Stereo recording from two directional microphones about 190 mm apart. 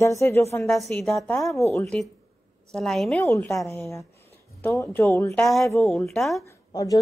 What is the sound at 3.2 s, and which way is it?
A woman's voice, 15° left (ahead or behind).